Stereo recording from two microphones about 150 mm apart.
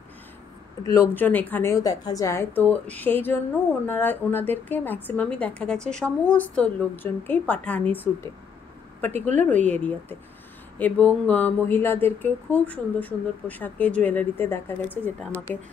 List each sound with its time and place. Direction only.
1.1 s speech: 10° left (ahead or behind)
9.2 s a woman's voice: 55° right (ahead or behind)
9.5 s speech: 10° left (ahead or behind)